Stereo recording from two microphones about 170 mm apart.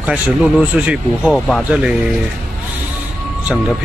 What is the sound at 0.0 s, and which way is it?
Speech, 5° right (ahead or behind).